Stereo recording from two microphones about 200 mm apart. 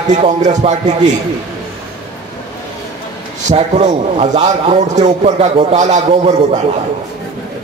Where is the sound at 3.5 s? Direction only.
35° right (ahead or behind).